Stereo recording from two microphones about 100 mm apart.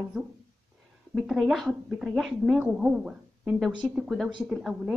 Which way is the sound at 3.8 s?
10° left (ahead or behind).